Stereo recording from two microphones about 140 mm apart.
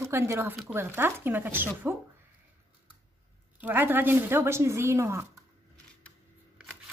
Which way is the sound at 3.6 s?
15° right (ahead or behind).